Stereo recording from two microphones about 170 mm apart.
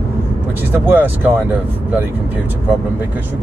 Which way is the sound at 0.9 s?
10° right (ahead or behind).